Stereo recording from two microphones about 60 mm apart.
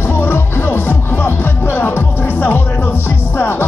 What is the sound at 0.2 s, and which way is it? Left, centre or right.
Music, left.